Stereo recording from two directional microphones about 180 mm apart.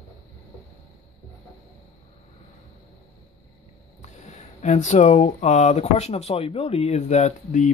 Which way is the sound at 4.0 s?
40° left (ahead or behind).